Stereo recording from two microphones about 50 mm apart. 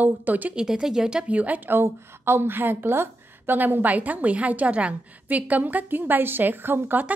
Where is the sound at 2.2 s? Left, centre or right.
Right.